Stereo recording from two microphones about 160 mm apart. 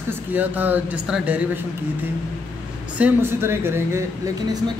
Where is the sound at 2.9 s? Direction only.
10° right (ahead or behind).